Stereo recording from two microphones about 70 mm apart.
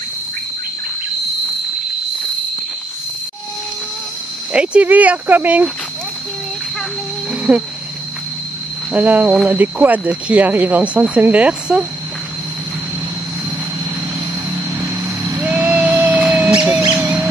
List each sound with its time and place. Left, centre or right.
4.5 s speech: centre
7.5 s speech: right
8.9 s speech: right
15.7 s music: right
16.0 s a sound: centre